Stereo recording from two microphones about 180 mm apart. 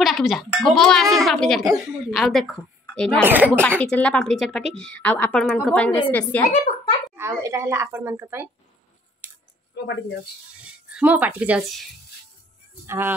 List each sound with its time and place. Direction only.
0.0 s a woman's voice: centre (ahead or behind)
3.3 s a woman's voice: 10° right (ahead or behind)
3.8 s a woman's voice: 5° left (ahead or behind)
7.2 s a woman's voice: 15° right (ahead or behind)
9.2 s scissors: 10° right (ahead or behind)
9.8 s speech: 70° left (ahead or behind)
10.6 s speech: 5° right (ahead or behind)
12.8 s a woman's voice: 15° right (ahead or behind)